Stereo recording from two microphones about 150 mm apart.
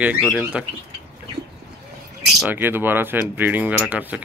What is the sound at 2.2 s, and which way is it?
Speech, 10° right (ahead or behind).